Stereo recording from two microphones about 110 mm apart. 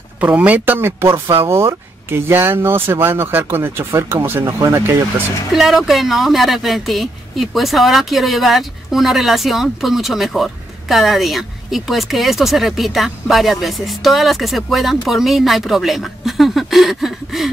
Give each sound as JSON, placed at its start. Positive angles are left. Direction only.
{"t": 0.2, "sound": "speech", "side_deg": -15}
{"t": 5.5, "sound": "speech", "side_deg": 0}